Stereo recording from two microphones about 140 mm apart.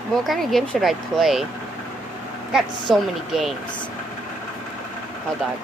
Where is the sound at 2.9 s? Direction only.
Centre (ahead or behind).